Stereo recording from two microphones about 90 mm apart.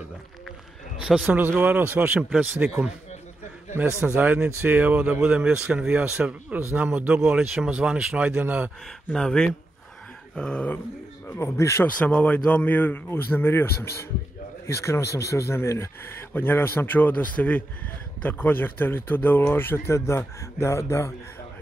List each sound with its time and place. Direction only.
0.9 s speech: 10° right (ahead or behind)
2.2 s speech: centre (ahead or behind)
4.0 s speech: 15° right (ahead or behind)
4.4 s speech: 25° right (ahead or behind)
8.8 s speech: 5° left (ahead or behind)
11.2 s speech: 30° left (ahead or behind)
11.8 s speech: 15° left (ahead or behind); by 21.1 s 30° left (ahead or behind)